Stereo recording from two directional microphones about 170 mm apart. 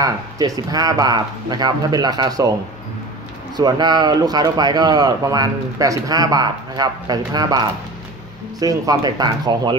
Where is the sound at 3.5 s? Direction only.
25° right (ahead or behind).